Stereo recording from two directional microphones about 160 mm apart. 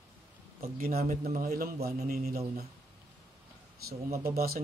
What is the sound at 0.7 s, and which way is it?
A man's voice, 65° right (ahead or behind).